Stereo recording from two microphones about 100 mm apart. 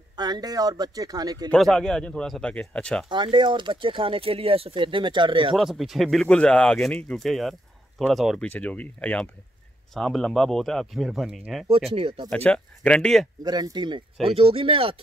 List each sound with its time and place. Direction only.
0.1 s a man's voice: 45° right (ahead or behind)
1.5 s speech: 5° left (ahead or behind)
3.1 s speech: 50° right (ahead or behind)
5.6 s speech: centre (ahead or behind)
8.4 s speech: 15° left (ahead or behind)
9.9 s speech: 5° left (ahead or behind)
11.9 s speech: 60° right (ahead or behind)
12.3 s speech: 10° left (ahead or behind)
13.4 s speech: 40° right (ahead or behind)
14.2 s speech: 70° right (ahead or behind)